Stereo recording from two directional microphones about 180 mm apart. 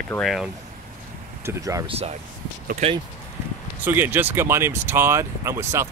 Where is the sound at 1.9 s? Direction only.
35° right (ahead or behind).